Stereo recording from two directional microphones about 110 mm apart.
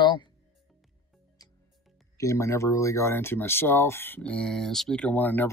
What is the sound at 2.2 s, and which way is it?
Speech, 25° left (ahead or behind).